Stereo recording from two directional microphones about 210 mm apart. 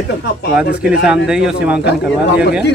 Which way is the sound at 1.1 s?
5° right (ahead or behind).